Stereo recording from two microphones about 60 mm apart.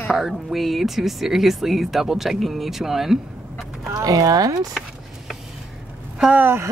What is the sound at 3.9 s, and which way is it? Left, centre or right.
Speech, right.